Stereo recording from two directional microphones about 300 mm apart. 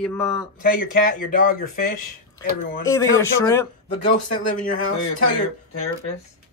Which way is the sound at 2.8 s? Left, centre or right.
Centre.